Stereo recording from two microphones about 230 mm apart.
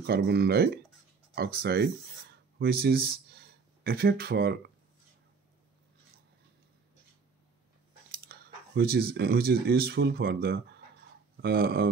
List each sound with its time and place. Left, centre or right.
0.0 s speech: right
8.3 s speech: right